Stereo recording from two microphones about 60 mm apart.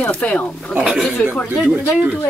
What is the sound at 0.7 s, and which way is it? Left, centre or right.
Speech, centre.